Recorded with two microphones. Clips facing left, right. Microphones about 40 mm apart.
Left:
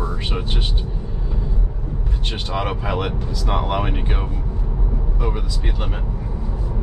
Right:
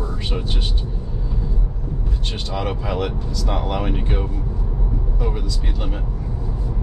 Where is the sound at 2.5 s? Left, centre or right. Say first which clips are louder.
Left 1 dB; centre.